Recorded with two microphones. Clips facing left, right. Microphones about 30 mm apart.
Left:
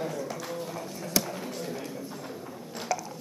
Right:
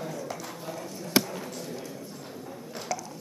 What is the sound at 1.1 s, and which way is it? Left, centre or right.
Basketball bounce, right.